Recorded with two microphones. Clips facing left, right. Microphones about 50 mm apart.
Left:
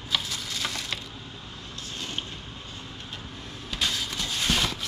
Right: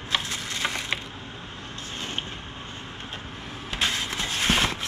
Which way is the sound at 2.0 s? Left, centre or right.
Right.